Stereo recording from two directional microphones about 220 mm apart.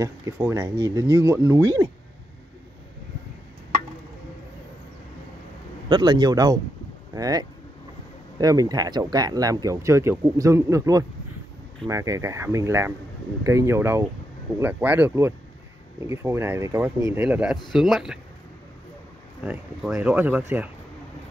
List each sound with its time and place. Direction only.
0.0 s speech: 15° right (ahead or behind)
5.9 s speech: 20° right (ahead or behind); by 18.2 s centre (ahead or behind)
19.4 s speech: 5° right (ahead or behind)